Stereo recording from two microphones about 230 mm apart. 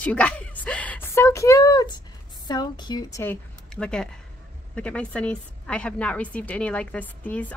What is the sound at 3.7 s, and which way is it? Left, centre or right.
A woman's voice, centre.